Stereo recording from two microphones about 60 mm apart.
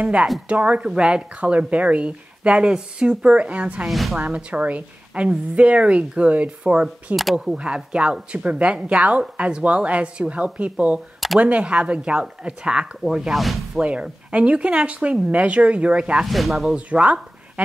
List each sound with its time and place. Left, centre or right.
0.0 s speech: right
3.9 s speech: centre
4.2 s speech: right; by 13.8 s centre
13.8 s speech: right
16.3 s speech: centre
16.7 s speech: right